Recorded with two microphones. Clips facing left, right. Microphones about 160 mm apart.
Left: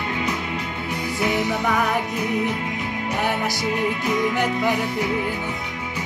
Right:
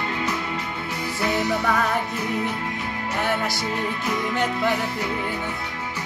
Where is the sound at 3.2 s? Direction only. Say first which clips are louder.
Even; 15° left (ahead or behind).